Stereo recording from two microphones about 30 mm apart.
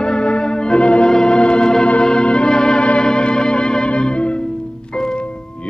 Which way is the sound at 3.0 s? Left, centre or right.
Left.